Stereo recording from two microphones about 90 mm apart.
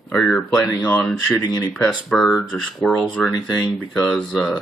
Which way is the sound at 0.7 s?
15° left (ahead or behind).